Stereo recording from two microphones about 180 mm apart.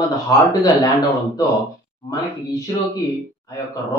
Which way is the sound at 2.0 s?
20° left (ahead or behind).